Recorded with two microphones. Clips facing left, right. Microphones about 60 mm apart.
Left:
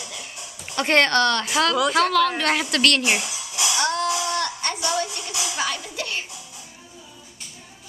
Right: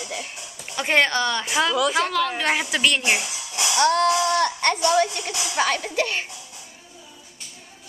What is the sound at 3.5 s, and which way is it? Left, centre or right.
Music, right.